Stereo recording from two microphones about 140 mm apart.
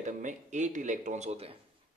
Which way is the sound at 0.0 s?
60° right (ahead or behind).